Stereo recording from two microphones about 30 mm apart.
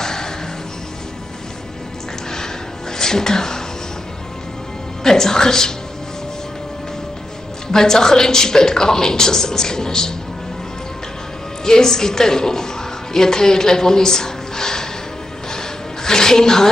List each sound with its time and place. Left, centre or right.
0.0 s music: centre
3.0 s music: centre
5.0 s a woman's voice: centre
7.6 s a woman's voice: centre
11.6 s a woman's voice: centre
15.5 s a sound: left